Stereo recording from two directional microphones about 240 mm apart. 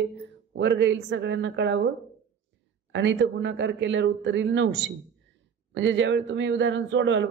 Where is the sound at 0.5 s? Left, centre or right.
Right.